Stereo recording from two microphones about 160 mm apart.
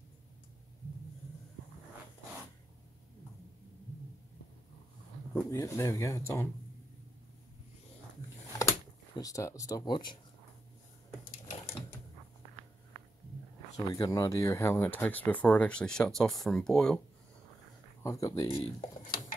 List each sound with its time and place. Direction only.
5.5 s speech: 20° left (ahead or behind)
8.5 s speech: 20° left (ahead or behind)
13.7 s speech: 25° left (ahead or behind); by 17.0 s 5° left (ahead or behind)
18.0 s speech: 20° left (ahead or behind)
18.5 s speech: 35° left (ahead or behind)